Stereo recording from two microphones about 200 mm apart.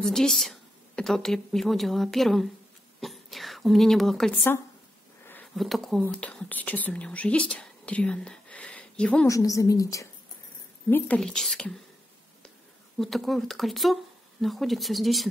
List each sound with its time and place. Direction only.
0.0 s a woman's voice: centre (ahead or behind)
9.4 s a woman's voice: 15° left (ahead or behind)
13.0 s a woman's voice: centre (ahead or behind)